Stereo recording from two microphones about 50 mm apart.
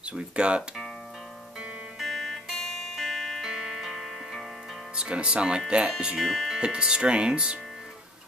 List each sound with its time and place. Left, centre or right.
0.1 s speech: right
2.0 s music: centre
3.4 s music: centre
4.9 s speech: centre
6.2 s speech: centre
6.6 s speech: centre